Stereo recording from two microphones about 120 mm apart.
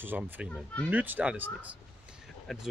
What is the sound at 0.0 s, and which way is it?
Speech, 15° right (ahead or behind).